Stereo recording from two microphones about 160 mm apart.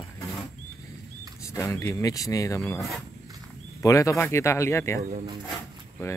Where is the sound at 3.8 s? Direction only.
20° left (ahead or behind).